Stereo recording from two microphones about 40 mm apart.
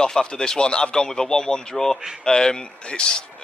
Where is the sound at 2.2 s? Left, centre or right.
Centre.